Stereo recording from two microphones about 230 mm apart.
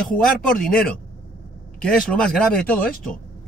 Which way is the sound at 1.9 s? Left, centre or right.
Centre.